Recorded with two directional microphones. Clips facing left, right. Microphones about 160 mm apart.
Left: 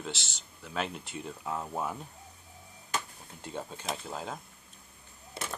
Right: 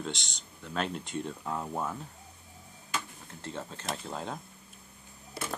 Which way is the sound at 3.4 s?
10° left (ahead or behind).